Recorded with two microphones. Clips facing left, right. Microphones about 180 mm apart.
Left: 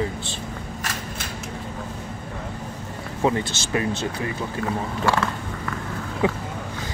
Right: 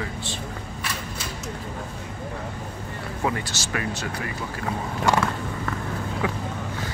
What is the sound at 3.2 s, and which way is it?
Speech, 25° left (ahead or behind).